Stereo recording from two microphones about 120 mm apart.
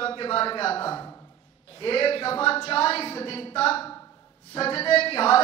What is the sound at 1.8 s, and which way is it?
Speech, 50° left (ahead or behind).